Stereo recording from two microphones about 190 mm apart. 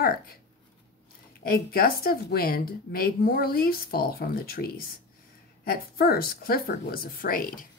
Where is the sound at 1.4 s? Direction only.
50° left (ahead or behind).